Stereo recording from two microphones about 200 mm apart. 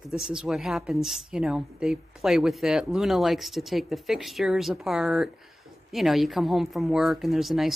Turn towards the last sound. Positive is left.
turn(degrees=0)  # may be behind; listen again after turning